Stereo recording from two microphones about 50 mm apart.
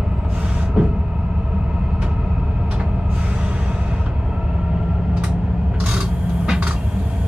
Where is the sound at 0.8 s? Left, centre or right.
Centre.